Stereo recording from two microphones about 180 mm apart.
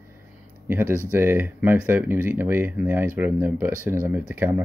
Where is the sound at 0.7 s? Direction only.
15° right (ahead or behind).